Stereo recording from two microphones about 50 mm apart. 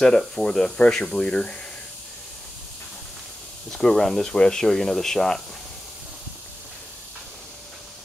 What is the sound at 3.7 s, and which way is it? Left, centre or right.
Speech, centre.